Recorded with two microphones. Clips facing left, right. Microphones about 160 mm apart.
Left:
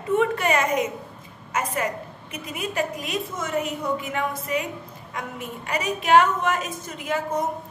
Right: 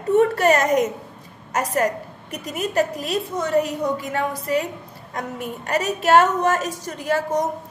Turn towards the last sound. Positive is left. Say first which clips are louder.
# right 4 dB
turn(degrees=-40)  # may be behind; listen again after turning